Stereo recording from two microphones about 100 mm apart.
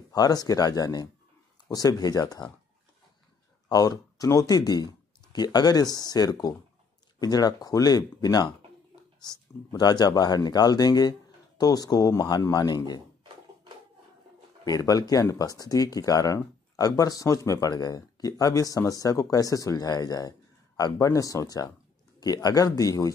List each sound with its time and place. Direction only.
0.1 s speech: 40° left (ahead or behind)
3.6 s speech: 40° left (ahead or behind)
14.6 s speech: 35° left (ahead or behind)